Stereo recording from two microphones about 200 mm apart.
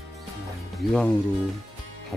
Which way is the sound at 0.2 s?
Centre (ahead or behind).